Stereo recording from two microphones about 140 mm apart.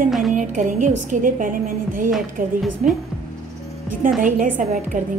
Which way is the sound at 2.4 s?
90° right.